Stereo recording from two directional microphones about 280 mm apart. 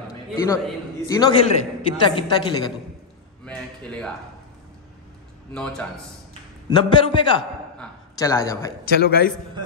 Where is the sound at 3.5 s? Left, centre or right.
Centre.